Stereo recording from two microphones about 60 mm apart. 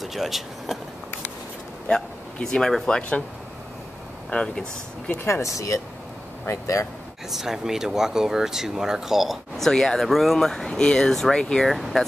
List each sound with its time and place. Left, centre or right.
0.0 s speech: centre
2.4 s speech: centre
3.0 s speech: centre
4.3 s speech: centre
5.2 s speech: left
7.2 s speech: centre
9.7 s speech: centre
11.7 s speech: centre